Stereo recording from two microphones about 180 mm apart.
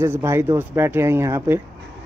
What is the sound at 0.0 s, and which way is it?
Speech, 15° right (ahead or behind).